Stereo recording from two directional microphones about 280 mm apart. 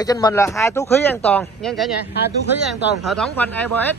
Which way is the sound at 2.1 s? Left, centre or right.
Left.